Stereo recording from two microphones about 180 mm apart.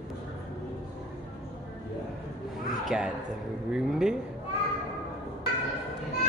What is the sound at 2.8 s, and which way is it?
Speech, 5° right (ahead or behind).